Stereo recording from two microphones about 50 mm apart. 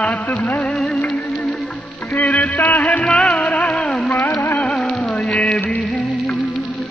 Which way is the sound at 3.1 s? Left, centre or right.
Left.